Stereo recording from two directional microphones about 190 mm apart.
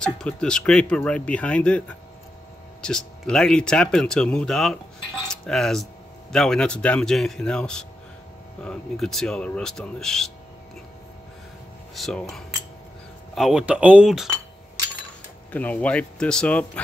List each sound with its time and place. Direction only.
0.0 s speech: 5° left (ahead or behind)
2.8 s speech: 5° left (ahead or behind)
5.3 s cutlery: centre (ahead or behind)
6.3 s speech: 5° left (ahead or behind)
12.0 s speech: centre (ahead or behind)
15.5 s speech: 10° left (ahead or behind)